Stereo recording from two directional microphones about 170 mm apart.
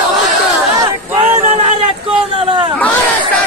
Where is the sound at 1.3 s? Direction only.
40° right (ahead or behind).